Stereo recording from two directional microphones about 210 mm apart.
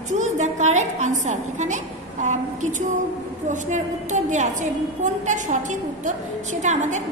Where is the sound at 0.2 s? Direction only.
35° right (ahead or behind).